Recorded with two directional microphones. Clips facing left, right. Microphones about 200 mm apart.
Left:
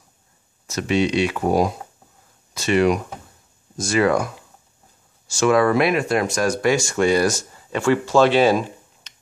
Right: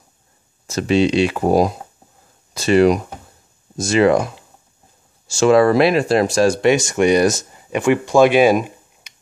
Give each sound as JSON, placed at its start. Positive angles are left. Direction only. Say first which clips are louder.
{"t": 0.7, "sound": "speech", "louder": "right 4 dB", "side_deg": -30}
{"t": 3.7, "sound": "speech", "louder": "right 4 dB", "side_deg": -25}